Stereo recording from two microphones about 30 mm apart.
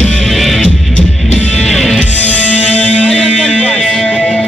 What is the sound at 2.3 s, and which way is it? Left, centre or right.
Music, left.